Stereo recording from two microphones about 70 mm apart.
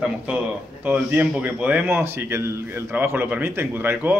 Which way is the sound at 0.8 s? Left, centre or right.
Right.